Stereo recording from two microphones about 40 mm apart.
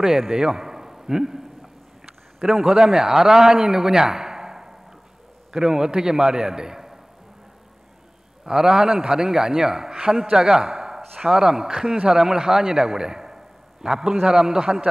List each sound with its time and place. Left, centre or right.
0.0 s a man's voice: centre
2.4 s a man's voice: centre
8.5 s a man's voice: centre